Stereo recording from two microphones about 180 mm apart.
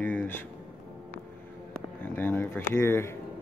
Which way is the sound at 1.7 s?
10° left (ahead or behind).